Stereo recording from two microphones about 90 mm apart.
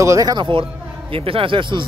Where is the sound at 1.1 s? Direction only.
90° right; by 1.8 s 70° right (ahead or behind).